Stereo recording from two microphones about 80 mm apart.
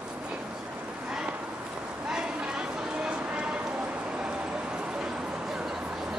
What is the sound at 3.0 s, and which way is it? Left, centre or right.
Clip-clop, centre.